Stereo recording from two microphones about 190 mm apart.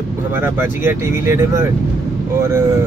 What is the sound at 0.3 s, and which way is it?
Speech, 10° right (ahead or behind).